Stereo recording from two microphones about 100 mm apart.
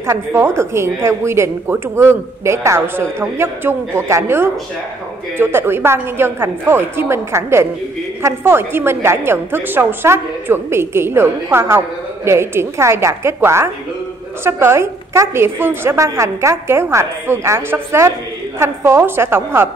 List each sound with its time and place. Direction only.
0.0 s speech: 25° right (ahead or behind)